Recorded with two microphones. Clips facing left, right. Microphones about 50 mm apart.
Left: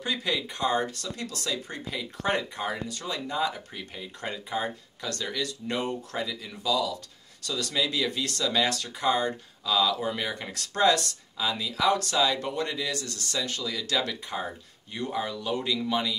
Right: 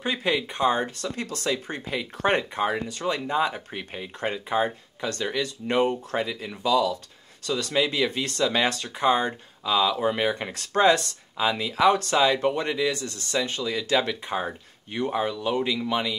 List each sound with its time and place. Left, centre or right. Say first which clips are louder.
0.0 s speech: right 4 dB; right